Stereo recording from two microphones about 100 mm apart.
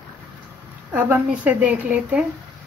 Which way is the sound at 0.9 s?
20° right (ahead or behind).